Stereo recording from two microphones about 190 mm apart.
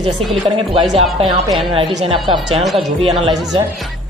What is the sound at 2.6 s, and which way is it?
Speech, centre (ahead or behind).